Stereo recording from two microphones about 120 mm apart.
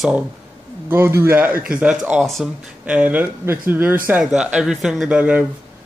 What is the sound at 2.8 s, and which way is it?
Speech, 10° right (ahead or behind).